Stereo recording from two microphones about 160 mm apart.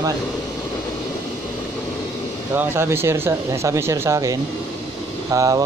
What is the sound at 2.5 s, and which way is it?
Speech, 15° right (ahead or behind).